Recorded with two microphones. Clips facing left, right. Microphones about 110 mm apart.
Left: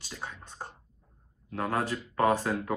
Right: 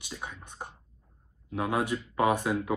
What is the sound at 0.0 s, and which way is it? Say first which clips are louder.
Speech: right 1 dB; 15° right (ahead or behind).